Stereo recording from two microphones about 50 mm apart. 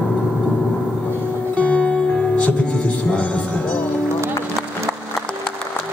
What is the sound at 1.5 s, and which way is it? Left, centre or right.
Music, left.